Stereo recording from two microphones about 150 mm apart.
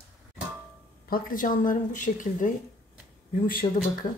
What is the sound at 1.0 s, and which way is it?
Speech, 70° left (ahead or behind).